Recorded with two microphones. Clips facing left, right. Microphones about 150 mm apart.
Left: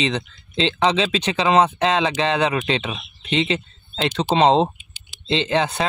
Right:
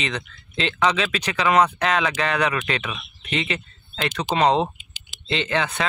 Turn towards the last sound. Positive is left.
turn(degrees=30)  # may be behind; listen again after turning